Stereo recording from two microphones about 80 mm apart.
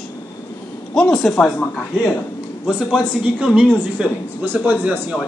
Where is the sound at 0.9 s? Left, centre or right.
Centre.